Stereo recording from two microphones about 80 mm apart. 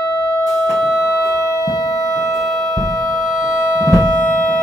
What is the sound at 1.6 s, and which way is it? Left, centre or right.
Music, left.